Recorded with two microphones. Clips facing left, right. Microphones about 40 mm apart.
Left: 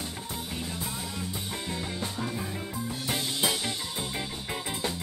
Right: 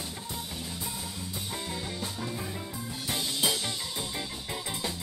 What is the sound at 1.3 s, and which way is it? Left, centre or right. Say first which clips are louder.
Music: left 1 dB; centre.